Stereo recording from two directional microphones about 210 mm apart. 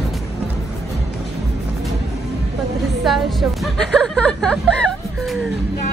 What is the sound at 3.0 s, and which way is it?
Speech, centre (ahead or behind).